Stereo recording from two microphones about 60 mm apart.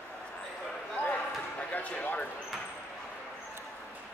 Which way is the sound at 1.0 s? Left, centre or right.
Left.